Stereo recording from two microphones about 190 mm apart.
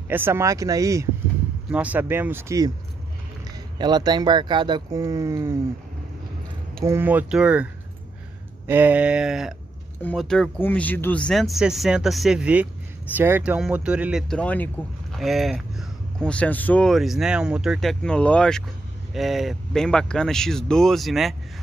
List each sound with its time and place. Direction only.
0.1 s speech: 10° right (ahead or behind)
3.7 s speech: 20° right (ahead or behind)
6.8 s speech: 15° right (ahead or behind)